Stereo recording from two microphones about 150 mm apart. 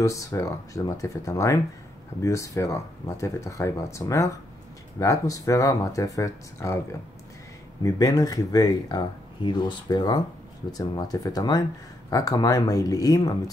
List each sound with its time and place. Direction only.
0.0 s speech: 20° left (ahead or behind)
7.8 s speech: 25° left (ahead or behind)